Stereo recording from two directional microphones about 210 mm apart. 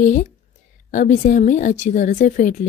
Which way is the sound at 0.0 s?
35° left (ahead or behind).